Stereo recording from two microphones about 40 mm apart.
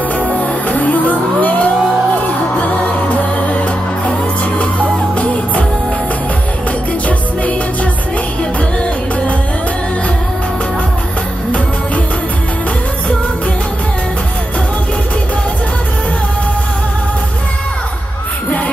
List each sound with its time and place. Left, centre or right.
0.1 s music: left